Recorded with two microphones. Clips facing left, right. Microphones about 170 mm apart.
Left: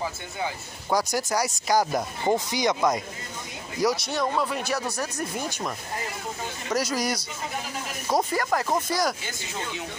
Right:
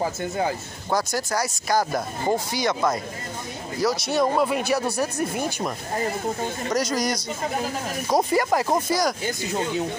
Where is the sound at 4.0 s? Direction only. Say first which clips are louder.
Right 5 dB; 5° right (ahead or behind).